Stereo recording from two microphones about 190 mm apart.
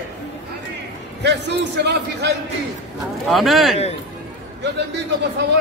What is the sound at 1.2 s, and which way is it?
A man's voice, 65° right (ahead or behind).